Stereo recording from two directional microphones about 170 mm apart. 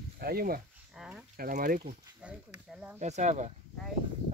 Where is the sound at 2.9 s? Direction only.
45° right (ahead or behind).